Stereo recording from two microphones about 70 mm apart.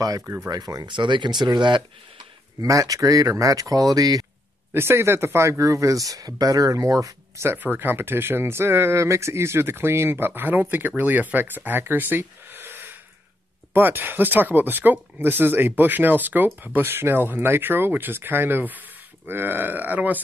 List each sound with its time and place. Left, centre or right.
0.5 s speech: right
2.6 s speech: right
4.7 s speech: right
7.4 s speech: right